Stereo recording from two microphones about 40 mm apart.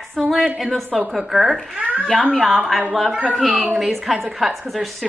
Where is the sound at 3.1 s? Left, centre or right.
Right.